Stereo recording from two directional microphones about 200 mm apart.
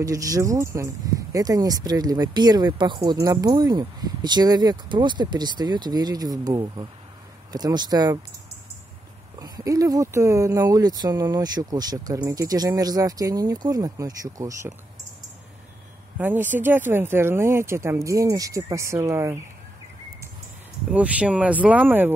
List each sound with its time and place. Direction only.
0.0 s speech: 15° right (ahead or behind)
9.4 s speech: 20° right (ahead or behind)
16.2 s speech: 10° right (ahead or behind)
20.9 s speech: 5° right (ahead or behind)